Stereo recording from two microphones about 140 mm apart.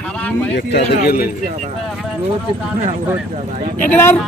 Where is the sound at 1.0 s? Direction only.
90° left.